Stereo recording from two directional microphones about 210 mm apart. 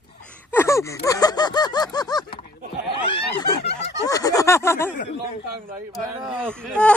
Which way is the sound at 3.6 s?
55° left (ahead or behind).